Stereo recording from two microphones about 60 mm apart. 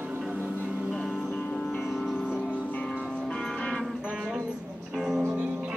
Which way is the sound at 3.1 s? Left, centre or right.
Centre.